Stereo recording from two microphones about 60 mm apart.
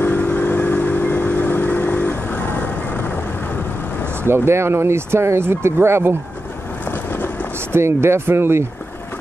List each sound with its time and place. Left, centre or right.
0.0 s vehicle: left
4.1 s speech: right
6.8 s boat: left
7.5 s speech: right